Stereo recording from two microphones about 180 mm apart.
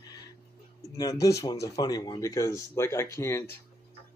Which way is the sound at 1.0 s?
20° left (ahead or behind).